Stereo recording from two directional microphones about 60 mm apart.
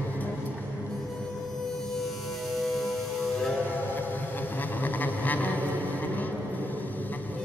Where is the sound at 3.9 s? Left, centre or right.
Left.